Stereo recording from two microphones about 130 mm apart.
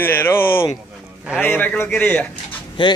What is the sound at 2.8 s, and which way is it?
Speech, 40° left (ahead or behind).